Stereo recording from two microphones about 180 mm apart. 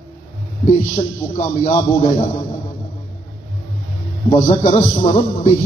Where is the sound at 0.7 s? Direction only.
35° left (ahead or behind).